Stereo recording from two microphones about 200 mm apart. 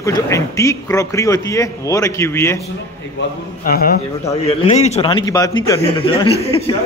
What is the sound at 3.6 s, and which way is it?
Speech, 45° left (ahead or behind).